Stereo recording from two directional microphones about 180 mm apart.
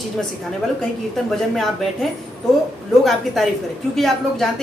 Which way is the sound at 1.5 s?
Centre (ahead or behind).